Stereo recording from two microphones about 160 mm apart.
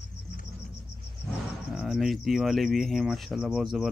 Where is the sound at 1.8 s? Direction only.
Centre (ahead or behind).